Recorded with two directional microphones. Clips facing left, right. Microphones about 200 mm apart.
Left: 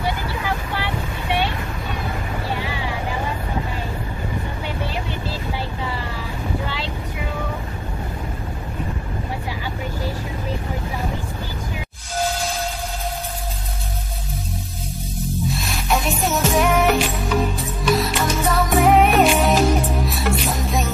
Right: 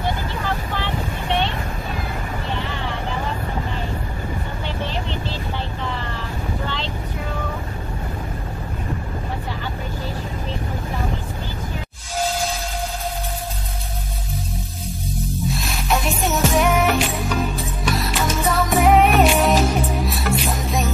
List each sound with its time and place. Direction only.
0.7 s vehicle: 10° left (ahead or behind)
2.6 s vehicle: 10° left (ahead or behind)
15.4 s music: centre (ahead or behind)